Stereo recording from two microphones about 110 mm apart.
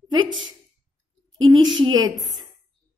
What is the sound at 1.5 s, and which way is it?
Speech, 45° right (ahead or behind).